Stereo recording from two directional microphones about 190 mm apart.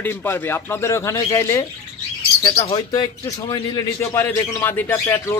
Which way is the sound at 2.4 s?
25° left (ahead or behind).